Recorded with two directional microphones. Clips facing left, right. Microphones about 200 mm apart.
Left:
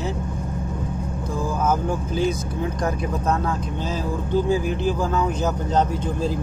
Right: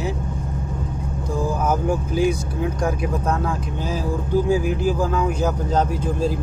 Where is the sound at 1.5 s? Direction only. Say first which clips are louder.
Left 1 dB; 15° right (ahead or behind).